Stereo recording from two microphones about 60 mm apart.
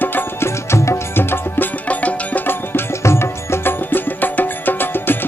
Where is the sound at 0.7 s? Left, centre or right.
Left.